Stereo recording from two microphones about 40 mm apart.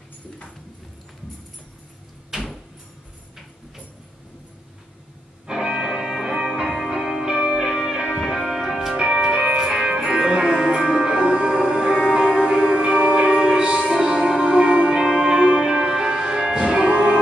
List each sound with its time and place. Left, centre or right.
5.5 s music: centre
7.3 s music: right
7.6 s music: centre; by 13.8 s right
13.9 s music: centre